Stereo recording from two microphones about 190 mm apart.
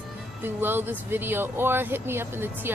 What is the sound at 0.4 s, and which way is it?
A woman's voice, 10° right (ahead or behind).